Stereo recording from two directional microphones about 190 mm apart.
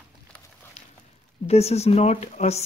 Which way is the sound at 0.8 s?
35° left (ahead or behind).